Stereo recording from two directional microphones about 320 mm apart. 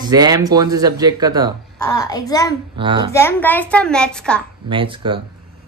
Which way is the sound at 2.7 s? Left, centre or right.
Centre.